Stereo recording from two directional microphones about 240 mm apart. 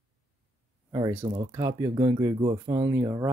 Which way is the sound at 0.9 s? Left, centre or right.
Centre.